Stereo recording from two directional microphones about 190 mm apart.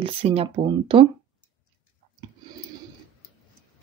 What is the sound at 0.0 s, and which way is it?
Speech, 30° right (ahead or behind).